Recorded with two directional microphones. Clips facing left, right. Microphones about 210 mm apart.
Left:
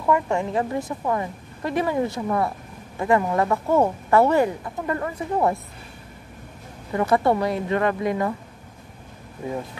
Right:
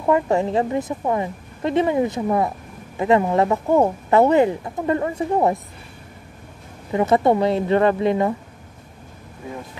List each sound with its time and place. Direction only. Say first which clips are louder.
0.0 s speech: right 4 dB; 30° right (ahead or behind)
0.7 s speech: right 3 dB; 20° right (ahead or behind)
6.9 s speech: right 3 dB; 20° right (ahead or behind)